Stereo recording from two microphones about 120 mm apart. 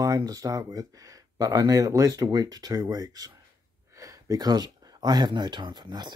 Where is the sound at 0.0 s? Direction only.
30° right (ahead or behind).